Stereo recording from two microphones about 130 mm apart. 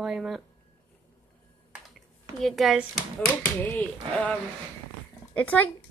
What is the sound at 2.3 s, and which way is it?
Speech, centre (ahead or behind).